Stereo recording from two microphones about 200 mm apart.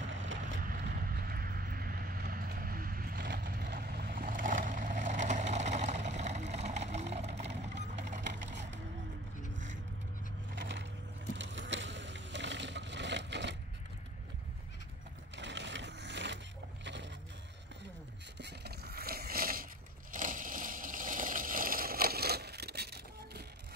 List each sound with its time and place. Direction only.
0.0 s boat: 70° right (ahead or behind)
0.7 s clip-clop: 50° right (ahead or behind)
3.4 s vehicle: 45° right (ahead or behind)
8.1 s a sound: 40° right (ahead or behind)
10.6 s a sound: 60° right (ahead or behind)
11.3 s vehicle: 65° right (ahead or behind)
15.3 s crushing: 60° right (ahead or behind)
16.8 s a sound: 65° right (ahead or behind)
18.4 s scrape: 55° right (ahead or behind)